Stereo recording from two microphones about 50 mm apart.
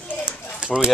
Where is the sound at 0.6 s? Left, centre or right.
Right.